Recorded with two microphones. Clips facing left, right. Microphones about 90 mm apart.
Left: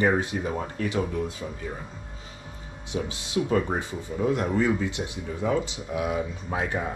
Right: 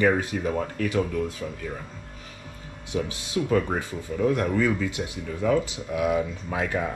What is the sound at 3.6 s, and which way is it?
Speech, 20° left (ahead or behind).